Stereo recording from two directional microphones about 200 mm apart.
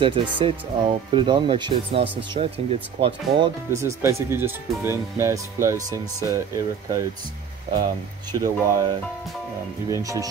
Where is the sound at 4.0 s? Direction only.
10° right (ahead or behind).